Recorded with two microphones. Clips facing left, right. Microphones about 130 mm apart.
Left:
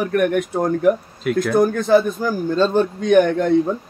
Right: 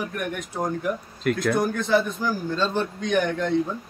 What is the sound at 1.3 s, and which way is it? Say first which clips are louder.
Speech: left 5 dB; 5° left (ahead or behind).